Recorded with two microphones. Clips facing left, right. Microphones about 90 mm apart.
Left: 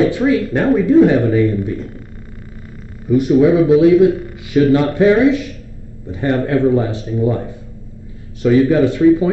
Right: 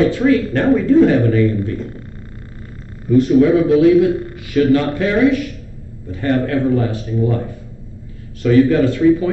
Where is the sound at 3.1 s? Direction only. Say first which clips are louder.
Even; 15° left (ahead or behind).